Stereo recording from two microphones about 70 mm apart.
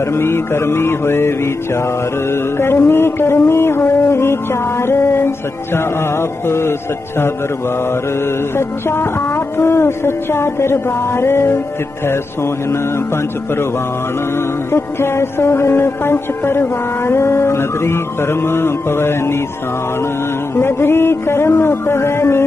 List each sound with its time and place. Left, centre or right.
0.0 s music: left
8.5 s music: left
12.6 s music: left
14.7 s music: left
20.5 s music: left